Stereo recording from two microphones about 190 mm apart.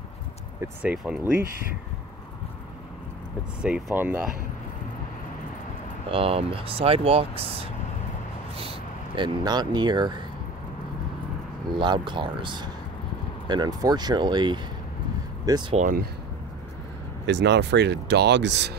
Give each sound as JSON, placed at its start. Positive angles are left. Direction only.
{"t": 0.6, "sound": "speech", "side_deg": -5}
{"t": 3.6, "sound": "speech", "side_deg": -10}
{"t": 6.0, "sound": "speech", "side_deg": -30}
{"t": 8.5, "sound": "speech", "side_deg": -25}
{"t": 11.8, "sound": "speech", "side_deg": -25}
{"t": 15.7, "sound": "speech", "side_deg": -45}
{"t": 17.3, "sound": "speech", "side_deg": -65}